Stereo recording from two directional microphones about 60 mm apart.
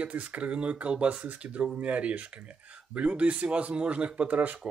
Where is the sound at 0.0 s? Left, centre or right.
Right.